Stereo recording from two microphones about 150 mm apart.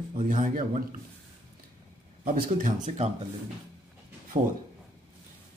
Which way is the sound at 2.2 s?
70° right (ahead or behind).